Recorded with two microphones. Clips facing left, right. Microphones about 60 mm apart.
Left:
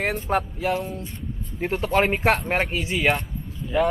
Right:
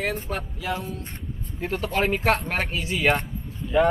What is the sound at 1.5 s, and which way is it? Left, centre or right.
Speech, left.